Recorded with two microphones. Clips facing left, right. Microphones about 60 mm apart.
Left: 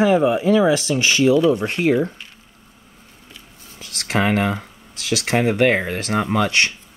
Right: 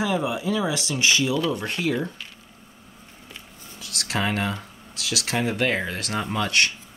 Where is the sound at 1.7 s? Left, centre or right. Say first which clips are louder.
Left 7 dB; left.